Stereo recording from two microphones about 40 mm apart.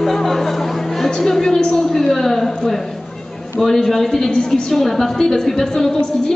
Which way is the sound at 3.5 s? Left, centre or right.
Centre.